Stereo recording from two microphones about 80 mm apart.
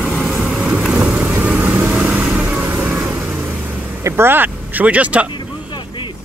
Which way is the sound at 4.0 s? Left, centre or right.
Right.